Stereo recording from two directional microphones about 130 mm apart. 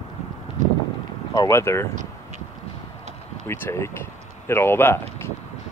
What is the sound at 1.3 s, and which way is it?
Speech, 25° left (ahead or behind).